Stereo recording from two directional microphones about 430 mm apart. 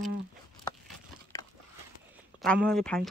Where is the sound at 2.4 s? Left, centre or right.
Centre.